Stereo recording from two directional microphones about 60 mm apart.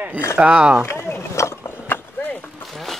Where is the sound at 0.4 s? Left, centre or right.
Centre.